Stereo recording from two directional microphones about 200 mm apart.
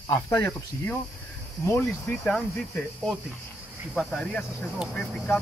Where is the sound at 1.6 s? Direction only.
10° left (ahead or behind).